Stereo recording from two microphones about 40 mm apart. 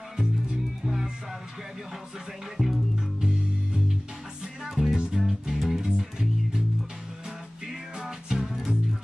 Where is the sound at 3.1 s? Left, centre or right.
Centre.